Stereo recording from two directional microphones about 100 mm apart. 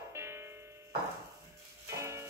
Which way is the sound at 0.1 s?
25° right (ahead or behind).